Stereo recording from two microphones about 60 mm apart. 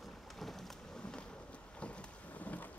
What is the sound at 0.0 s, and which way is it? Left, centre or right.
Thunder, centre.